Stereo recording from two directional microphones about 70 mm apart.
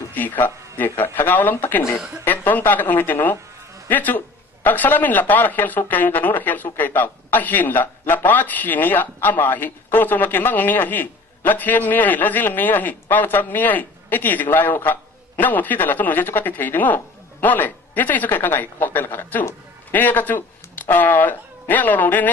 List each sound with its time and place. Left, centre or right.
0.1 s speech: left